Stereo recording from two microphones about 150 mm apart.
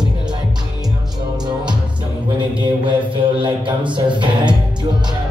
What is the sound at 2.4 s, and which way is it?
Mantra, 35° right (ahead or behind).